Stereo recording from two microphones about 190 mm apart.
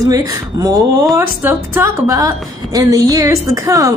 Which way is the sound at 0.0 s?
20° right (ahead or behind).